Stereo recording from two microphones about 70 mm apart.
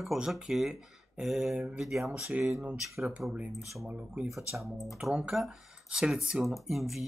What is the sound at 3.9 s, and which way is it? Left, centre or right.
Speech, right.